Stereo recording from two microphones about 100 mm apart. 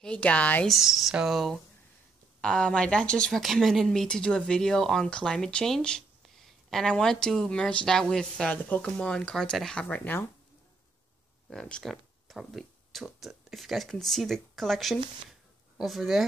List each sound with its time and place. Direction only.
0.0 s a woman's voice: 10° left (ahead or behind)
0.7 s a woman's voice: centre (ahead or behind)
9.8 s a woman's voice: 20° left (ahead or behind)
11.5 s a woman's voice: 10° left (ahead or behind)